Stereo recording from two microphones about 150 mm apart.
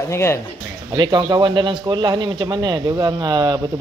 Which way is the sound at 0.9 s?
25° right (ahead or behind).